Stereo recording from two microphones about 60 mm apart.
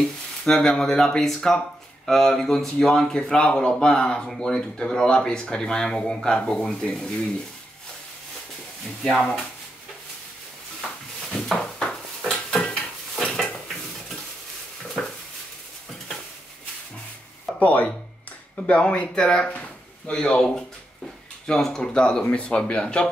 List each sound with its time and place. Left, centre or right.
0.5 s speech: centre
9.0 s speech: centre
11.5 s a sound: centre
12.3 s dishes: centre
13.2 s dishes: centre
15.0 s a sound: centre
17.6 s speech: left